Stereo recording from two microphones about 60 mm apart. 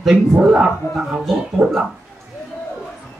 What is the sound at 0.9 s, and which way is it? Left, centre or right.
Speech, centre.